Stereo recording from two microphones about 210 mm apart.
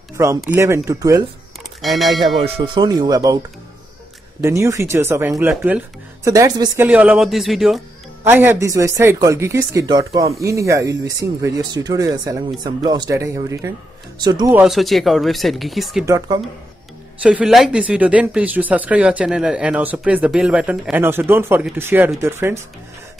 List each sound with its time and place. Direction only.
0.2 s speech: 15° right (ahead or behind)
1.8 s speech: centre (ahead or behind)
2.4 s speech: 25° right (ahead or behind)
4.4 s speech: 15° right (ahead or behind)
6.9 s speech: 5° right (ahead or behind)
8.2 s speech: 10° right (ahead or behind)
14.5 s speech: centre (ahead or behind)
16.1 s speech: 15° right (ahead or behind)
17.2 s speech: 5° right (ahead or behind)